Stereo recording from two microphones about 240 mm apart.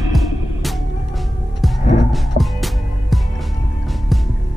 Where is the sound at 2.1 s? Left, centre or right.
Centre.